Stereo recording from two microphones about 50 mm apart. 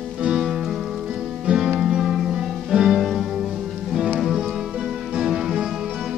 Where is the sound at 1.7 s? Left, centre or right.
Centre.